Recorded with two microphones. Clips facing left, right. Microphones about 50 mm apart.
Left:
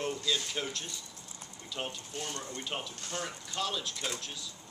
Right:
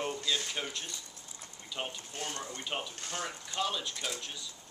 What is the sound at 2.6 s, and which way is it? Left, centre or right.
Speech, centre.